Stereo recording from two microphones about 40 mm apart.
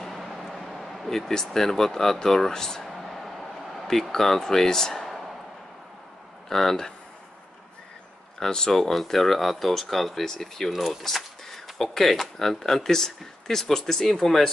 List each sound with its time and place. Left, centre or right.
0.0 s speech: centre
2.8 s a sound: centre
3.8 s speech: centre
5.0 s a sound: centre
6.5 s speech: centre
8.5 s speech: centre